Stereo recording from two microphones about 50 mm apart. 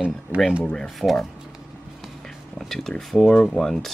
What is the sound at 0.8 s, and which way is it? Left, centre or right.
Speech, centre.